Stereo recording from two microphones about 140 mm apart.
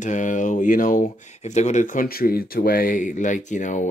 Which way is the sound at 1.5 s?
60° left (ahead or behind).